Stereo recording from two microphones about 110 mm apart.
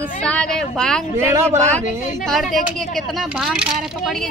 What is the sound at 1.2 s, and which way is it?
Speech, 25° right (ahead or behind).